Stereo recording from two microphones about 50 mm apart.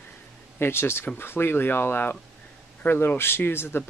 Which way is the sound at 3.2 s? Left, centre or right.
Left.